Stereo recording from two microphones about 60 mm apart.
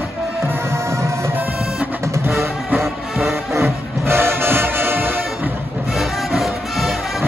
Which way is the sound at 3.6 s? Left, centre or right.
Right.